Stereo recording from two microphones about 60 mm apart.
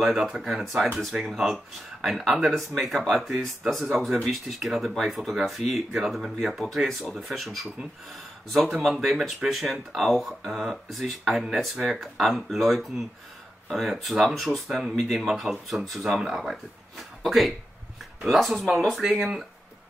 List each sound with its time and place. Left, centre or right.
0.0 s speech: centre